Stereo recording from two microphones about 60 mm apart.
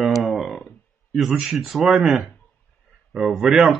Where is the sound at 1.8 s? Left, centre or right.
Centre.